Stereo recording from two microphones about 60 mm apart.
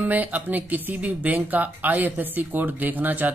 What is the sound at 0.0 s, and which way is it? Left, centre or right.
Speech, right.